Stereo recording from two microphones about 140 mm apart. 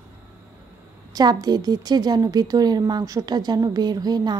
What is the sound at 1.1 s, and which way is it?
A woman's voice, 30° right (ahead or behind).